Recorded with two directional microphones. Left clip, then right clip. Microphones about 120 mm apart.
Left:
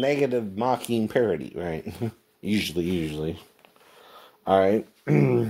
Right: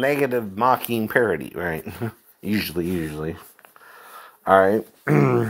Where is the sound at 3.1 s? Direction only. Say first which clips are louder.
Right 1 dB; centre (ahead or behind).